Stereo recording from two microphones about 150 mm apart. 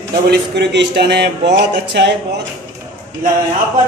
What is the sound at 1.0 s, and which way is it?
Speech, 90° right.